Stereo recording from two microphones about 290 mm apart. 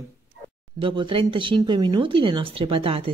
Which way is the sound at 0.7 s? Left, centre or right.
Centre.